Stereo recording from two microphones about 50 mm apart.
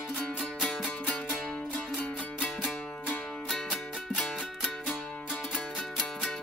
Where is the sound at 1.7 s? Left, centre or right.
Left.